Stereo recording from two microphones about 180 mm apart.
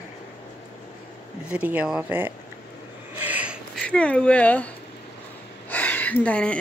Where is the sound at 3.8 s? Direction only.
5° left (ahead or behind).